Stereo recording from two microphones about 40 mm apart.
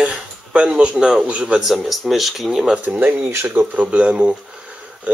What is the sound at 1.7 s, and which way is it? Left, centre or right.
Speech, centre.